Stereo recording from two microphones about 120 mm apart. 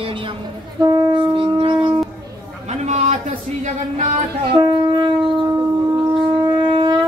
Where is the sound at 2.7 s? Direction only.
70° right (ahead or behind).